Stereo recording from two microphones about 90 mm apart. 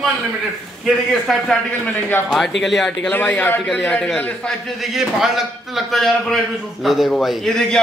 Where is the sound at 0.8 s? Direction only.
5° left (ahead or behind).